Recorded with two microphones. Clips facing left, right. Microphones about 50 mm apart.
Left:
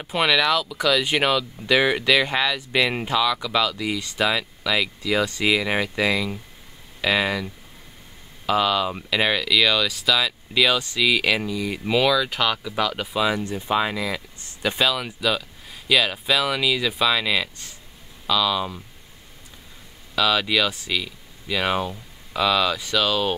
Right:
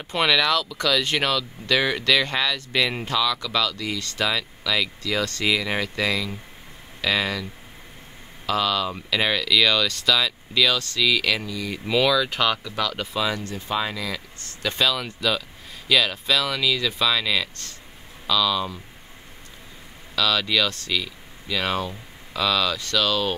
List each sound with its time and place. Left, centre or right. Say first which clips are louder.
0.0 s speech: left 1 dB; centre
8.5 s speech: left 2 dB; centre
20.2 s speech: left 2 dB; centre